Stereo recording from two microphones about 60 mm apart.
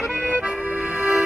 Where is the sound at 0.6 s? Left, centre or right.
Centre.